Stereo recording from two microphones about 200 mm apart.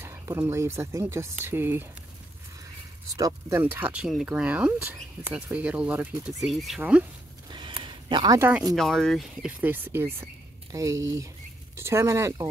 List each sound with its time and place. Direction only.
0.0 s speech: 15° right (ahead or behind)
3.2 s speech: 15° right (ahead or behind)
7.5 s a sound: 25° right (ahead or behind)
8.7 s speech: centre (ahead or behind); by 12.4 s 15° right (ahead or behind)